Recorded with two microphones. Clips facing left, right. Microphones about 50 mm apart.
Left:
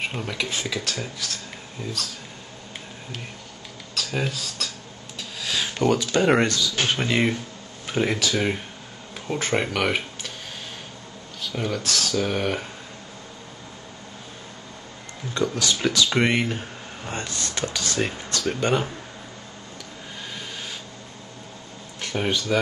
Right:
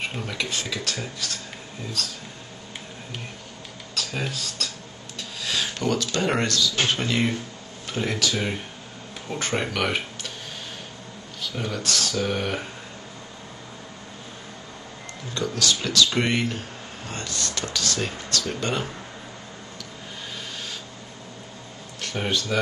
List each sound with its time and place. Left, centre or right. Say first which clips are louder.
0.0 s speech: left 1 dB; centre
4.1 s speech: left 4 dB; centre
5.4 s a sound: even; centre
5.8 s speech: left 6 dB; centre
11.5 s speech: left 2 dB; centre
15.3 s speech: left 1 dB; centre
22.0 s speech: left 2 dB; centre